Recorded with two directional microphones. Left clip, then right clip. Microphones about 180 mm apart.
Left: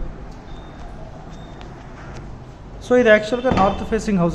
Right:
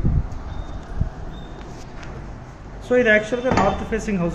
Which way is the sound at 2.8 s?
25° left (ahead or behind).